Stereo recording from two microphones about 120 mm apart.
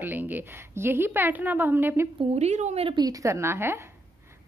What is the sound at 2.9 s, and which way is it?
Speech, 30° right (ahead or behind).